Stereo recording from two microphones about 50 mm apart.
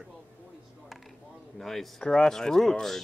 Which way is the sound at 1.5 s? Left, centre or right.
Centre.